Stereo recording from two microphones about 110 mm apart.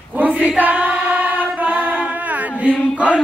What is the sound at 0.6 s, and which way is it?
Female singing, 15° right (ahead or behind).